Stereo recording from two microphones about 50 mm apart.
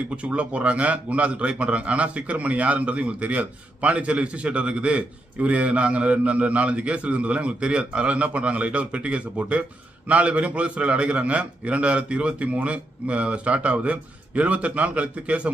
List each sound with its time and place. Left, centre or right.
0.1 s a man's voice: right